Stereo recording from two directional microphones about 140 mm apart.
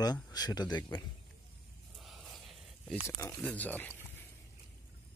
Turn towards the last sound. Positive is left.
turn(degrees=10)  # may be behind; listen again after turning